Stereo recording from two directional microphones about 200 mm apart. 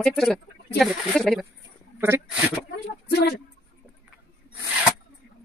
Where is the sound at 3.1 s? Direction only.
55° left (ahead or behind).